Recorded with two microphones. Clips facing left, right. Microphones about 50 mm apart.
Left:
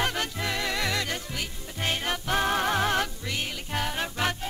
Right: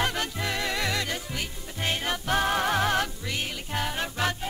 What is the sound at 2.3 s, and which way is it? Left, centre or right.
Music, left.